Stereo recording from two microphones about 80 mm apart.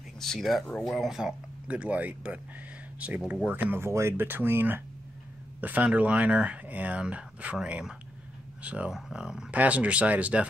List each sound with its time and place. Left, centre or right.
0.2 s speech: centre
0.7 s speech: centre
0.9 s speech: centre
1.7 s speech: centre
3.4 s speech: right
3.8 s speech: right; by 10.4 s centre